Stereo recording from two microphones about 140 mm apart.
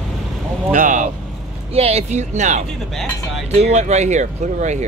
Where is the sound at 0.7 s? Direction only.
70° right (ahead or behind).